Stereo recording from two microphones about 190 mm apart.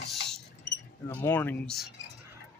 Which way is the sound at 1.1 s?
10° left (ahead or behind).